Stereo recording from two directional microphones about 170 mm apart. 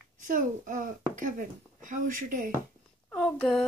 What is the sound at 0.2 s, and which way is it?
Speech, 50° right (ahead or behind).